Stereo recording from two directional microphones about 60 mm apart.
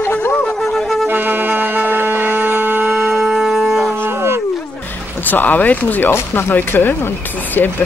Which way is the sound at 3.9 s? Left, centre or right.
Right.